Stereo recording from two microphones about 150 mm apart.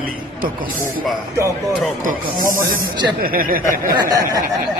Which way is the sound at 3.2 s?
75° right (ahead or behind).